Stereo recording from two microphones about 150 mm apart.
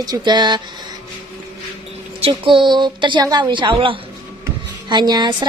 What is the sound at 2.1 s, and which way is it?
A woman's voice, 40° right (ahead or behind).